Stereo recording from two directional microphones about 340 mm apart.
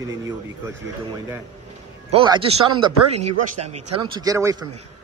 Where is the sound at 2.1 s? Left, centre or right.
Centre.